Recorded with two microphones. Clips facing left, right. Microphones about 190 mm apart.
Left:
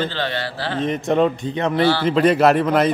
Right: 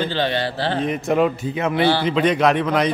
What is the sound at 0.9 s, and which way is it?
Speech, 5° right (ahead or behind).